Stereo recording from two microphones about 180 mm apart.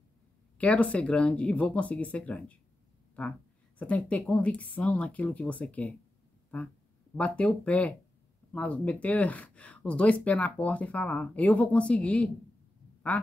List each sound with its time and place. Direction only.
0.6 s speech: 5° left (ahead or behind)
7.2 s speech: 5° left (ahead or behind)